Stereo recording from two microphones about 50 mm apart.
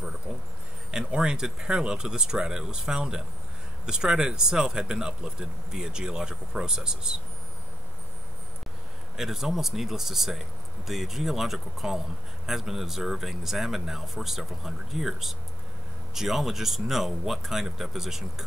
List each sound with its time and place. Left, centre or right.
0.9 s speech: centre
9.1 s speech: centre